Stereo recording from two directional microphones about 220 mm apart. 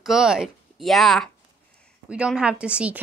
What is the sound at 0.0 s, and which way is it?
A woman's voice, centre (ahead or behind).